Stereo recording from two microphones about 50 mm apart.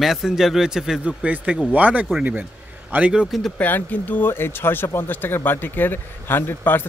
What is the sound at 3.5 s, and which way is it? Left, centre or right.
Speech, left.